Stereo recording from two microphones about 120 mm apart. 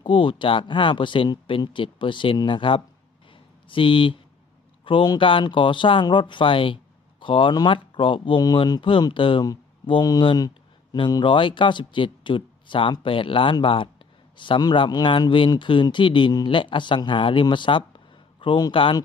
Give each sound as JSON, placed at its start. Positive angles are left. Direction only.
{"t": 0.0, "sound": "speech", "side_deg": 40}